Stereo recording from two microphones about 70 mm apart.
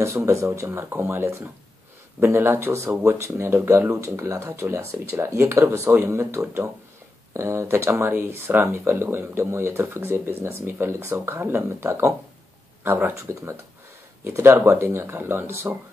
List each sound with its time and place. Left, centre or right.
0.0 s speech: right